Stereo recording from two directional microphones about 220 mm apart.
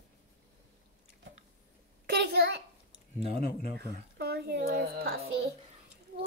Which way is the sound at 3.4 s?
40° left (ahead or behind).